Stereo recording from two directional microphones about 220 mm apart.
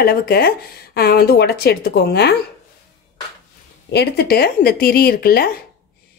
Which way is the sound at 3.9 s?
50° left (ahead or behind).